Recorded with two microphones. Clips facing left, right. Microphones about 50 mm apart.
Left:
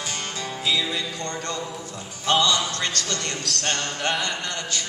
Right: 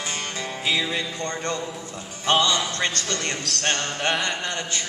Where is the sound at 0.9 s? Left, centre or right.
Right.